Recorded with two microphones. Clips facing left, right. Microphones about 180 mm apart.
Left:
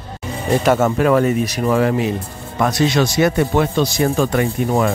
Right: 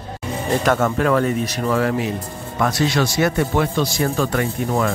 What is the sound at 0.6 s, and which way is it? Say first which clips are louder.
Speech: left 3 dB; 10° left (ahead or behind).